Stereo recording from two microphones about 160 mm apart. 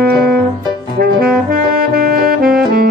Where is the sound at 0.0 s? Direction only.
75° right (ahead or behind).